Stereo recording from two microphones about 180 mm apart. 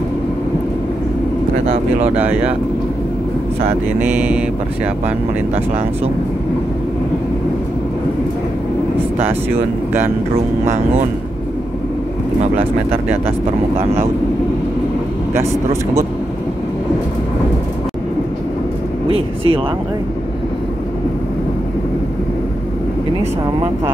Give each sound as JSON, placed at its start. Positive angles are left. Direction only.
{"t": 2.0, "sound": "speech", "side_deg": -10}
{"t": 4.2, "sound": "speech", "side_deg": -5}
{"t": 15.3, "sound": "speech", "side_deg": -15}
{"t": 19.1, "sound": "speech", "side_deg": -30}